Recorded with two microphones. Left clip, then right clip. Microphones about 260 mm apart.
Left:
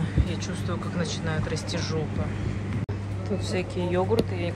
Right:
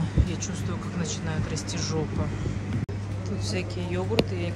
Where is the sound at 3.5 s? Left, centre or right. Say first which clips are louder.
Left 3 dB; centre.